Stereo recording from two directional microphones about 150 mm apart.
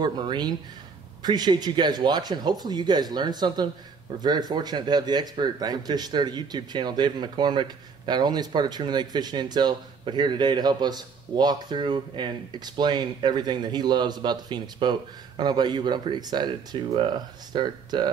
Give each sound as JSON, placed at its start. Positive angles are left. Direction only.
{"t": 0.0, "sound": "speech", "side_deg": -30}